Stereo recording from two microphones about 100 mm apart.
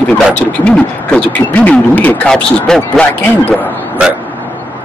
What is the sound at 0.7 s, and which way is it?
Speech, 15° left (ahead or behind).